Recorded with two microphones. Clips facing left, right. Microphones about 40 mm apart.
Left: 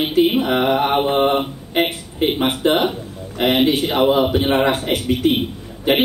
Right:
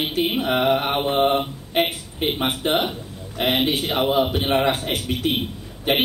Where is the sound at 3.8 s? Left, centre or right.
Centre.